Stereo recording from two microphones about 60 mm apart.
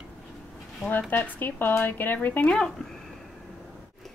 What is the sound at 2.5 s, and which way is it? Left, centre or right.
Speech, centre.